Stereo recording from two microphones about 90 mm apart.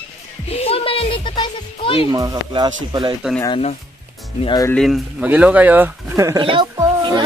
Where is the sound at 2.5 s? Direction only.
55° right (ahead or behind).